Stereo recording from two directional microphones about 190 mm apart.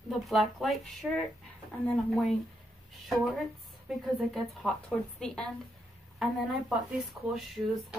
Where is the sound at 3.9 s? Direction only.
Centre (ahead or behind).